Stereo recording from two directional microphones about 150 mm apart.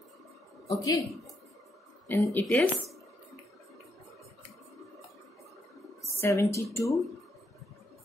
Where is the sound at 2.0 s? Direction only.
15° left (ahead or behind).